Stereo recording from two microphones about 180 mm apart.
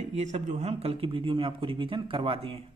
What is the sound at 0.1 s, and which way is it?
A man's voice, 40° right (ahead or behind).